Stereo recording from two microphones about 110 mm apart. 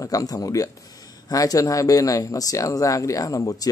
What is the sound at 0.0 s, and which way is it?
A man's voice, 30° left (ahead or behind).